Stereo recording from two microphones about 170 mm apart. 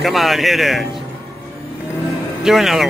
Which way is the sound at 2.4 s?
Centre (ahead or behind).